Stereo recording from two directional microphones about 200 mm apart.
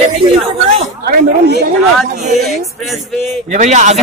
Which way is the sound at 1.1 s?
55° right (ahead or behind).